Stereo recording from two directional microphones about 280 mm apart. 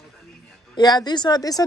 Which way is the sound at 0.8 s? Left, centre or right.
Centre.